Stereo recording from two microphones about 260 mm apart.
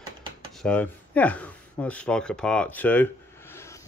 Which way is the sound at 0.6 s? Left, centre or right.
Centre.